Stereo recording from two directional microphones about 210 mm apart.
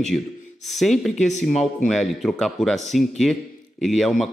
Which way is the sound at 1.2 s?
35° left (ahead or behind).